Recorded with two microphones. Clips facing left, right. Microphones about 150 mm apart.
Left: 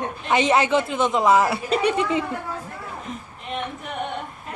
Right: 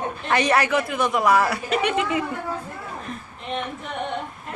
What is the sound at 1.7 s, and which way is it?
Speech, 35° left (ahead or behind).